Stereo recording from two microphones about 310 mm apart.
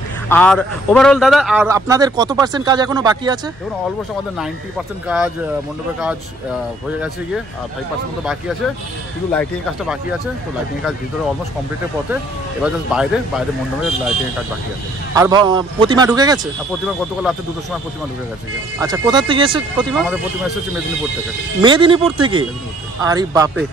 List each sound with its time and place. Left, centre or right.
0.3 s a man's voice: centre
5.0 s speech: centre
9.3 s speech: centre
12.6 s speech: centre
15.1 s a man's voice: centre
16.8 s speech: centre
18.8 s a man's voice: centre
21.5 s a man's voice: centre